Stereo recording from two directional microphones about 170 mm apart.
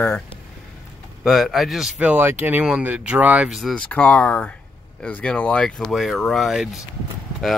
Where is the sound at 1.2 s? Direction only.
Centre (ahead or behind).